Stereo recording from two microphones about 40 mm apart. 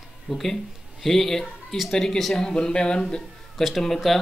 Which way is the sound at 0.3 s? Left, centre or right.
Centre.